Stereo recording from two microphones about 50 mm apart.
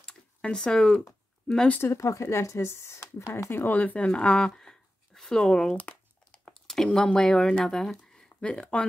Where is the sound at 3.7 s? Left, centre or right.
Left.